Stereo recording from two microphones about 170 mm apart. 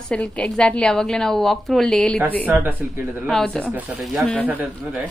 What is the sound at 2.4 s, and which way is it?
Speech, 10° right (ahead or behind).